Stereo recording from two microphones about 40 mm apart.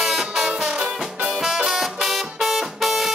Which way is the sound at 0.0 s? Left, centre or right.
Centre.